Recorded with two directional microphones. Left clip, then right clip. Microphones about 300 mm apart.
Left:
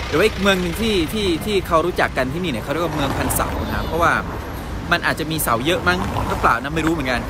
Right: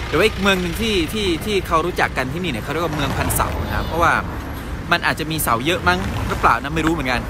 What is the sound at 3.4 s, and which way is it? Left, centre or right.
Speech, centre.